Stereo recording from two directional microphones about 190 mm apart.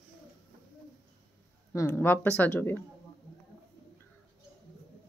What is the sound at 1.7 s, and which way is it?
Speech, 15° left (ahead or behind).